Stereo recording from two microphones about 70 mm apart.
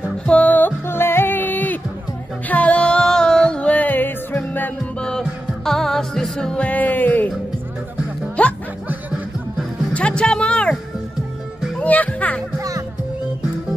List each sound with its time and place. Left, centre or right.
0.3 s music: left
5.7 s music: centre; by 7.2 s left
8.4 s music: centre
9.9 s music: centre
11.8 s music: left
12.5 s music: right